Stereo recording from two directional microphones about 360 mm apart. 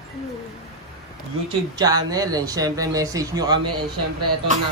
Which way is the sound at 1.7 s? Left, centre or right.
Centre.